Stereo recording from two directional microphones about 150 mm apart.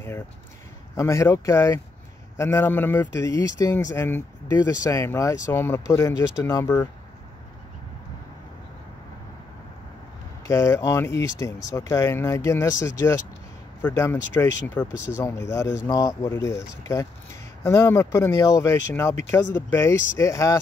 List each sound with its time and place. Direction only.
0.9 s speech: 20° left (ahead or behind)
10.4 s speech: 20° left (ahead or behind)